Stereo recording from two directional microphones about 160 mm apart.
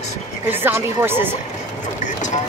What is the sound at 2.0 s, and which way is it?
Vehicle, 50° left (ahead or behind).